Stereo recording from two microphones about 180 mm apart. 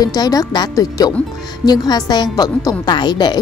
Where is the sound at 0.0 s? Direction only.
20° left (ahead or behind).